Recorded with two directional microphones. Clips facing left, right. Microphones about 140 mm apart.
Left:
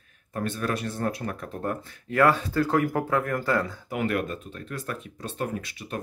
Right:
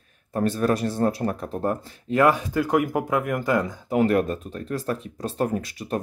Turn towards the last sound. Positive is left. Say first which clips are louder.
# right 6 dB
turn(degrees=-40)  # may be behind; listen again after turning